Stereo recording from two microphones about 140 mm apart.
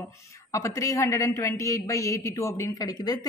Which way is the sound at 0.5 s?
20° left (ahead or behind).